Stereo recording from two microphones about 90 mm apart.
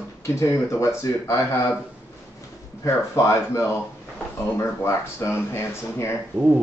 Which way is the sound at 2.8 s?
30° left (ahead or behind).